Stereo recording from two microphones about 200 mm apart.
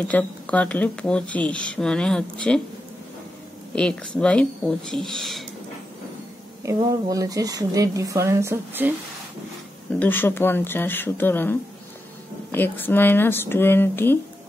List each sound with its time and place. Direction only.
0.1 s speech: 5° left (ahead or behind)
3.7 s speech: 5° left (ahead or behind)
6.6 s a woman's voice: 15° right (ahead or behind)
9.9 s speech: 10° left (ahead or behind)
12.5 s speech: 10° left (ahead or behind)